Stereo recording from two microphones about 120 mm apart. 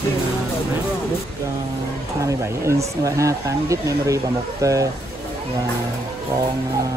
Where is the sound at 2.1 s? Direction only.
25° right (ahead or behind).